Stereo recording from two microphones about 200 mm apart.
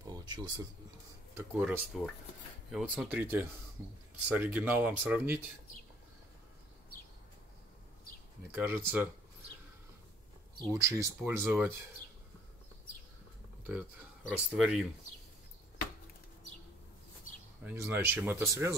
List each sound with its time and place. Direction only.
0.0 s a sound: 20° right (ahead or behind)
1.3 s speech: 10° right (ahead or behind)
8.5 s speech: 10° right (ahead or behind)
10.6 s speech: 15° right (ahead or behind)
14.5 s speech: 5° right (ahead or behind)
17.6 s speech: 10° right (ahead or behind)